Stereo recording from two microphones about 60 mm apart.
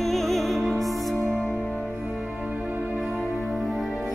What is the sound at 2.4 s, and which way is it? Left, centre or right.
Music, centre.